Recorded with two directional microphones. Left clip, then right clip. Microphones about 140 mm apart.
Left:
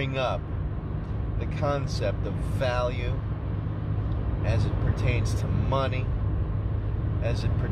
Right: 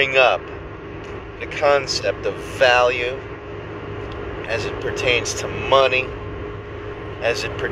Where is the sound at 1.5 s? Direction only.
15° left (ahead or behind).